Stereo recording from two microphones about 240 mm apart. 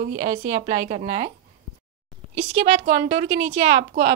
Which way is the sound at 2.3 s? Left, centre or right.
Right.